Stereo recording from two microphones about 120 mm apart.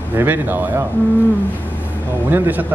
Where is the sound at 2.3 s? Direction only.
15° right (ahead or behind).